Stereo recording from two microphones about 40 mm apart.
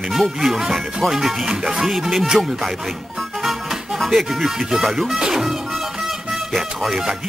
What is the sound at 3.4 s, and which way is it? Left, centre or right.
Music, centre.